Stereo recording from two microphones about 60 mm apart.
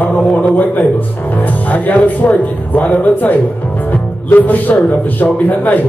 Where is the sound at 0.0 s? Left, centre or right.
Left.